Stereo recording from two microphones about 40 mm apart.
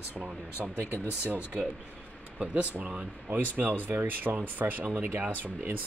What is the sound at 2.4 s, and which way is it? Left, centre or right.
Speech, right.